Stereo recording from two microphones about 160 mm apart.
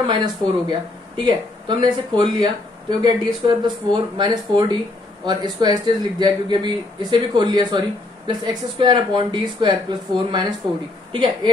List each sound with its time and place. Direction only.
0.0 s a man's voice: 30° right (ahead or behind)